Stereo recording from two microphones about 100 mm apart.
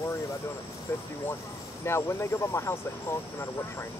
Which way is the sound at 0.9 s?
30° left (ahead or behind).